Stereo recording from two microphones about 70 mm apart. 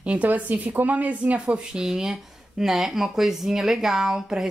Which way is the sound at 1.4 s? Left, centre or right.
Centre.